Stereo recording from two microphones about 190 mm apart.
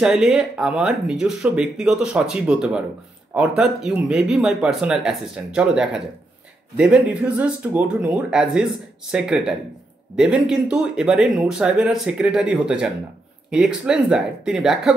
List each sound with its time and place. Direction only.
0.0 s speech: centre (ahead or behind)